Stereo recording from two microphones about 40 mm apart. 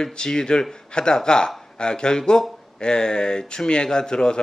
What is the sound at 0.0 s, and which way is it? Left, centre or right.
Speech, centre.